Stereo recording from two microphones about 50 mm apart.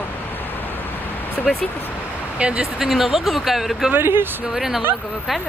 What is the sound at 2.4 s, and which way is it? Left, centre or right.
Speech, right.